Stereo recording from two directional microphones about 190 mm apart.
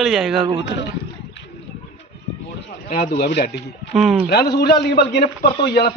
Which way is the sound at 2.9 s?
45° left (ahead or behind).